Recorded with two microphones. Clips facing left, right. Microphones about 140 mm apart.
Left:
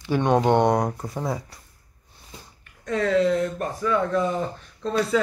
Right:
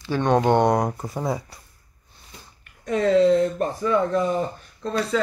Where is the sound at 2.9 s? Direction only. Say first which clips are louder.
Right 4 dB; 25° right (ahead or behind).